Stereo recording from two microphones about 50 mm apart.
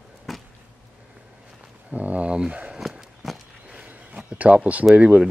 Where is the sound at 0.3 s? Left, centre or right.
Centre.